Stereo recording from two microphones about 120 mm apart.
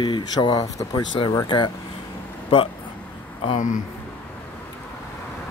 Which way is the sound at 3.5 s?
90° left.